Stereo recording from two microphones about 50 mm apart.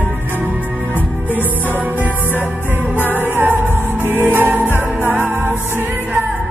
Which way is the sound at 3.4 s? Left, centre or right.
Right.